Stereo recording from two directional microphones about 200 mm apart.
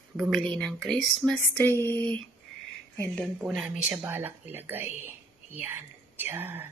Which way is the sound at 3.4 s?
5° right (ahead or behind).